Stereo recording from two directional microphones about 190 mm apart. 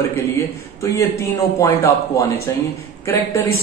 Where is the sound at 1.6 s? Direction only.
15° left (ahead or behind).